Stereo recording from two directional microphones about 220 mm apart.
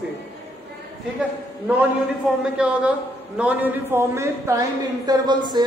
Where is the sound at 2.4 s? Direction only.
5° right (ahead or behind).